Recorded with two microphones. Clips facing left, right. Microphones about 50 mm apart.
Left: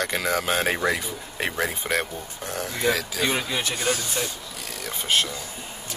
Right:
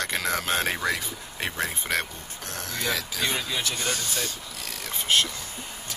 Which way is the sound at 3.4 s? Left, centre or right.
Left.